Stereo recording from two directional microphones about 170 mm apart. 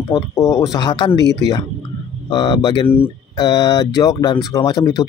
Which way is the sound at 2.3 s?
25° left (ahead or behind).